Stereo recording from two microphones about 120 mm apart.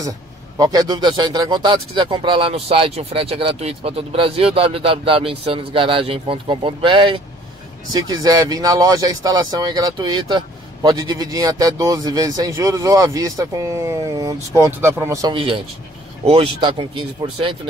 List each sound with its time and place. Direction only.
0.6 s speech: 30° right (ahead or behind)
7.9 s speech: 35° right (ahead or behind)
15.3 s speech: 45° right (ahead or behind)